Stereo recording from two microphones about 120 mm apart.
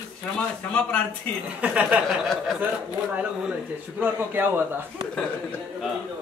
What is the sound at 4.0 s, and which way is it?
Speech, 15° right (ahead or behind).